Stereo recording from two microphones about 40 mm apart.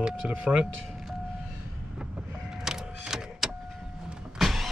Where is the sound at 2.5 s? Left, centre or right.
Centre.